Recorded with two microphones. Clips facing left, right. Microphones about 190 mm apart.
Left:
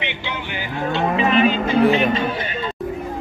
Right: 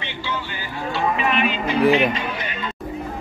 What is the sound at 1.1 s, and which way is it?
Music, 35° left (ahead or behind).